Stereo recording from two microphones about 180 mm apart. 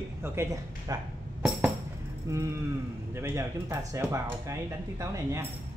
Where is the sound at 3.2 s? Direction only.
15° right (ahead or behind).